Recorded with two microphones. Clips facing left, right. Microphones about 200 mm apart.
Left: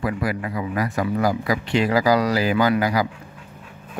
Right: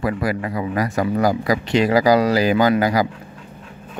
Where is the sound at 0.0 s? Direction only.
35° right (ahead or behind).